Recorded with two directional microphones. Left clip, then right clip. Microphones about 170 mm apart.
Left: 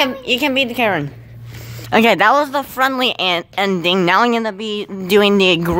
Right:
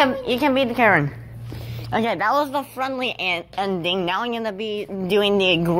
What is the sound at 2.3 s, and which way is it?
A woman's voice, 25° left (ahead or behind).